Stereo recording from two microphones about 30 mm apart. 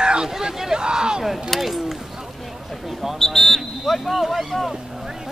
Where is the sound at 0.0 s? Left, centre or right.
Right.